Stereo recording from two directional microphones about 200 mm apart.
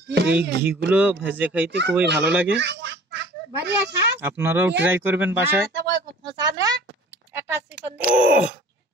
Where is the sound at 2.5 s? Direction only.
60° right (ahead or behind).